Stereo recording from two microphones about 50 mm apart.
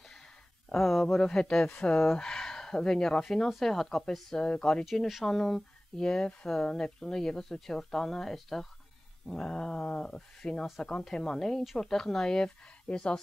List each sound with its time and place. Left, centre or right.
0.7 s speech: centre; by 2.0 s left
2.0 s speech: centre
5.2 s speech: centre
5.9 s speech: centre
9.3 s speech: centre